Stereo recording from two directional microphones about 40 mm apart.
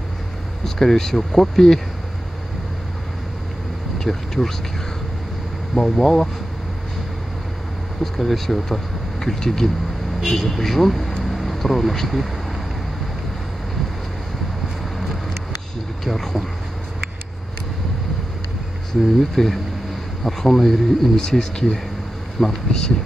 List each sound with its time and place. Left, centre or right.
0.7 s speech: centre
4.0 s speech: centre
5.8 s speech: centre
8.0 s speech: centre
16.0 s speech: centre
19.3 s speech: centre